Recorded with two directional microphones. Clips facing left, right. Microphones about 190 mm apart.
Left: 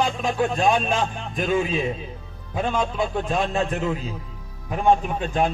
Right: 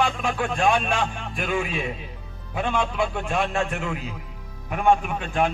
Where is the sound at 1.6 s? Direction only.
35° left (ahead or behind).